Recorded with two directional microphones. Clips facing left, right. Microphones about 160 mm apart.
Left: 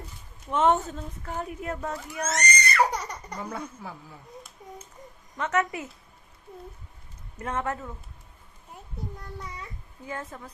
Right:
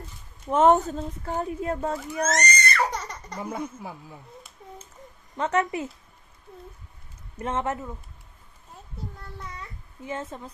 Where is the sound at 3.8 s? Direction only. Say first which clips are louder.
Right 2 dB; 15° right (ahead or behind).